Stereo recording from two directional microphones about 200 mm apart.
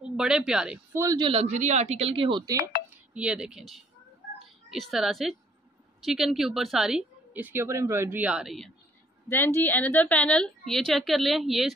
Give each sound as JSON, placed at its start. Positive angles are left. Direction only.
{"t": 0.1, "sound": "a woman's voice", "side_deg": -5}
{"t": 1.0, "sound": "speech", "side_deg": -20}
{"t": 2.9, "sound": "a woman's voice", "side_deg": -5}
{"t": 9.3, "sound": "a woman's voice", "side_deg": 10}